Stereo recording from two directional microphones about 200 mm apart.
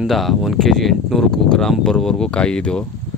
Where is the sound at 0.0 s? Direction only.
Centre (ahead or behind).